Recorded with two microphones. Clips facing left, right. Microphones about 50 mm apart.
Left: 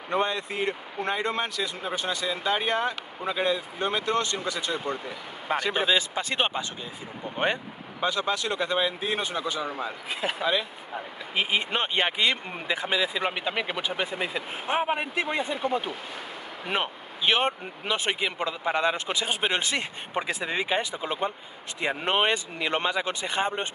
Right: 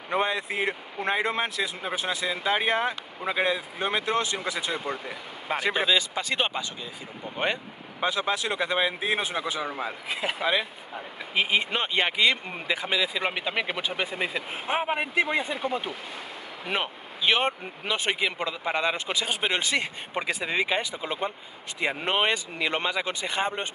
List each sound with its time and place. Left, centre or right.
0.1 s speech: centre
6.1 s speech: centre
7.2 s speech: centre
11.7 s speech: centre
13.2 s speech: centre
21.7 s speech: centre